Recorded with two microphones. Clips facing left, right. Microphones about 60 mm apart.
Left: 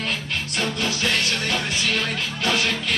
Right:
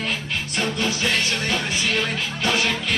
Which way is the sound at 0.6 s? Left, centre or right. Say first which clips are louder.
Right 1 dB; centre.